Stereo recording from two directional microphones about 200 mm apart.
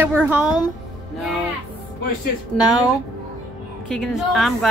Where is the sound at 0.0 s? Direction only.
10° right (ahead or behind).